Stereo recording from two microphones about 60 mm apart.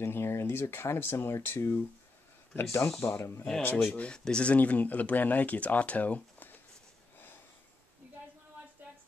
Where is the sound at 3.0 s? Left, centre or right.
Left.